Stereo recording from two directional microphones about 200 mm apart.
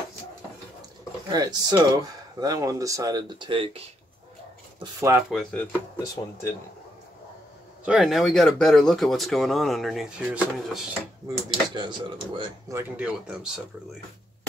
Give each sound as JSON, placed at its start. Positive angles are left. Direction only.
{"t": 1.3, "sound": "speech", "side_deg": -20}
{"t": 4.7, "sound": "speech", "side_deg": -15}
{"t": 5.3, "sound": "speech", "side_deg": 5}
{"t": 7.8, "sound": "speech", "side_deg": 0}
{"t": 11.2, "sound": "speech", "side_deg": -20}
{"t": 12.9, "sound": "speech", "side_deg": -5}